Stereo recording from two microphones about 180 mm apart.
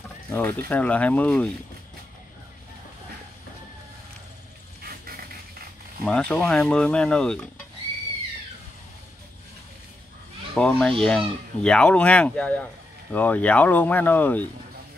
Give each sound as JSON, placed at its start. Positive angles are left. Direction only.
{"t": 0.3, "sound": "speech", "side_deg": 10}
{"t": 4.8, "sound": "a sound", "side_deg": -55}
{"t": 6.0, "sound": "speech", "side_deg": 5}
{"t": 10.5, "sound": "speech", "side_deg": 5}